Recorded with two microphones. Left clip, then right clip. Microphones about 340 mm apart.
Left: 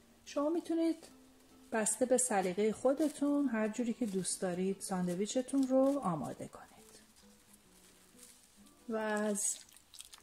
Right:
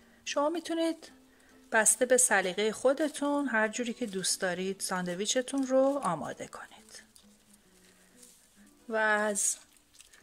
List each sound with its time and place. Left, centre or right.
0.3 s a woman's voice: right
9.0 s a woman's voice: right